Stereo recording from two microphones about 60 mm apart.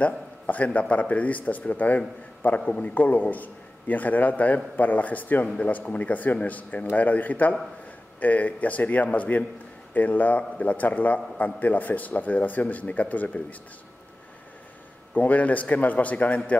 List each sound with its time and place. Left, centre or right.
0.0 s a man's voice: left
15.1 s speech: left